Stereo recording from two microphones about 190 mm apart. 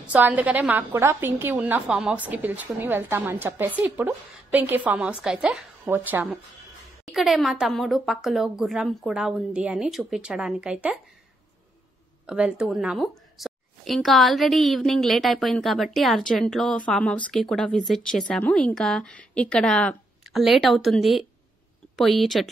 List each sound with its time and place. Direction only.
0.0 s a woman's voice: 10° right (ahead or behind)
7.1 s speech: centre (ahead or behind)
12.3 s speech: 5° right (ahead or behind)